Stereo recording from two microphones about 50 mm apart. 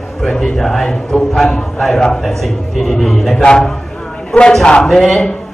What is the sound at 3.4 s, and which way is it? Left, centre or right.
A man's voice, centre.